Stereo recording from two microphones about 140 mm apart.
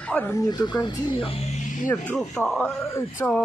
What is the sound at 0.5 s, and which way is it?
Speech, 30° left (ahead or behind).